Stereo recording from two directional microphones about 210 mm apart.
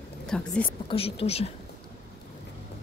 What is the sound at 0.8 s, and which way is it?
Speech, 25° left (ahead or behind).